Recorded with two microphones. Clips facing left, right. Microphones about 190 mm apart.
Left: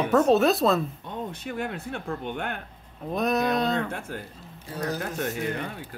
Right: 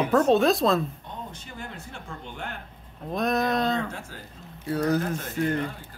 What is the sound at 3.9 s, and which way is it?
Speech, 55° left (ahead or behind).